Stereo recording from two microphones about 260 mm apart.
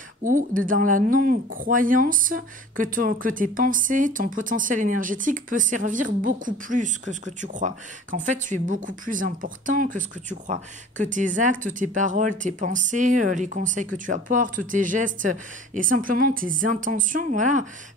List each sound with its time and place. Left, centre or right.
0.2 s speech: right